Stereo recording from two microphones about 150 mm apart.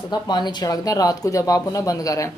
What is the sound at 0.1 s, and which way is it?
Speech, 30° left (ahead or behind).